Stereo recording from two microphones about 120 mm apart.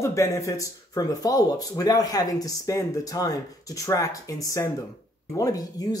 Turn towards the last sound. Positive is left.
turn(degrees=30)  # may be behind; listen again after turning